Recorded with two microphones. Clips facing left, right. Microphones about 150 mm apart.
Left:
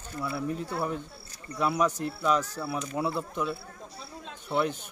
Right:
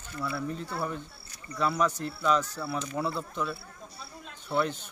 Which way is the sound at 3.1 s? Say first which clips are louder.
Left 2 dB; 15° left (ahead or behind).